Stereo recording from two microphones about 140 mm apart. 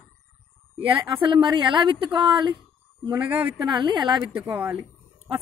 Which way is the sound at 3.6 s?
35° right (ahead or behind).